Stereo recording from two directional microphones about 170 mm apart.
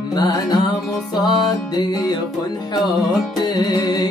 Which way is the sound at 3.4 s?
25° left (ahead or behind).